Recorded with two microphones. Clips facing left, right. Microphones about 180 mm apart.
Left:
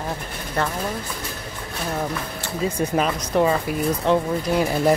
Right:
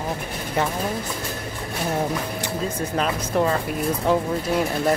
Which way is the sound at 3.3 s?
5° left (ahead or behind).